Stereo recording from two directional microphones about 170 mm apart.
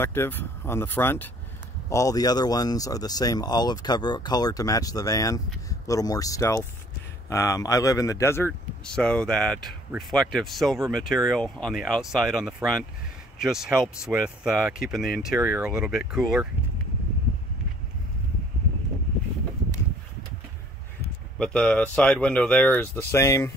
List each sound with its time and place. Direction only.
0.0 s speech: 15° left (ahead or behind); by 16.4 s 5° right (ahead or behind)
21.4 s speech: 5° left (ahead or behind)